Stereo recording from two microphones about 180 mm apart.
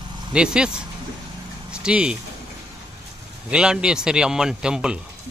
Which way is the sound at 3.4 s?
5° right (ahead or behind).